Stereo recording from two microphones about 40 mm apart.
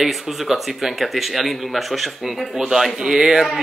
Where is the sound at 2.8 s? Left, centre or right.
Centre.